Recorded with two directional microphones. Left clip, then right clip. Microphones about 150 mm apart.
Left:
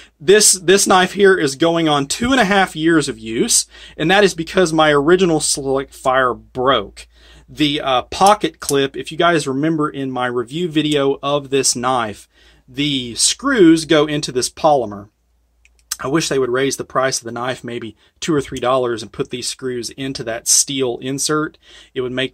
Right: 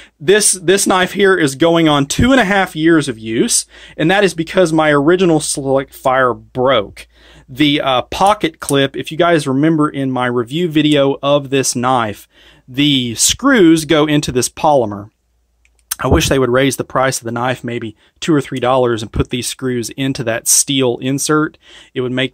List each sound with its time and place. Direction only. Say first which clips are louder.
0.2 s speech: even; 30° right (ahead or behind)
0.7 s speech: even; 35° right (ahead or behind)